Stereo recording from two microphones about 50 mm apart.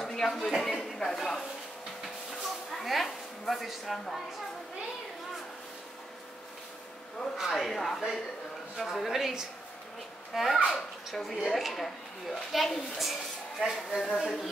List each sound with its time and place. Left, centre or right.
0.0 s a sound: centre
0.6 s speech: centre
2.8 s speech: centre
7.3 s a woman's voice: centre